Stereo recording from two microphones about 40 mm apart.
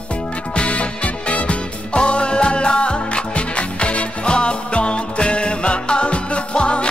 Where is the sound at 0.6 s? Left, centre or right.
Left.